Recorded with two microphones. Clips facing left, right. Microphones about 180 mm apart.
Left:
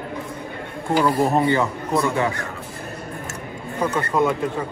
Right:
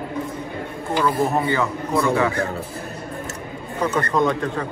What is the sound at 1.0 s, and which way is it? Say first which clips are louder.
Speech: left 1 dB; 20° left (ahead or behind).